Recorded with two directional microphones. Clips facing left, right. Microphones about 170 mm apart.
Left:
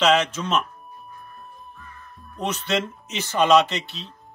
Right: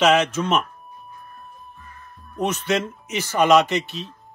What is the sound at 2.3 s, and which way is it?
Speech, 15° right (ahead or behind).